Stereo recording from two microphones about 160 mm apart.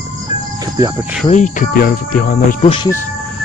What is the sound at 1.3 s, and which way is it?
Cricket, 50° left (ahead or behind).